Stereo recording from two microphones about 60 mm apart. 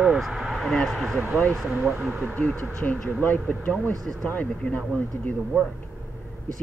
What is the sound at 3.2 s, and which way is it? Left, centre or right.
Speech, left.